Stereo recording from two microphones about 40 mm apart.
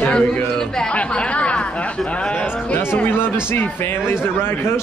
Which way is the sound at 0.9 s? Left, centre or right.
Left.